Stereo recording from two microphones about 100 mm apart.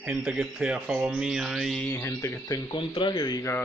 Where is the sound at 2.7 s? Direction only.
55° left (ahead or behind).